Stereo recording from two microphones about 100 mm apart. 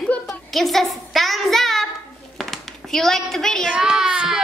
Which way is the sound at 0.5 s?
Centre (ahead or behind).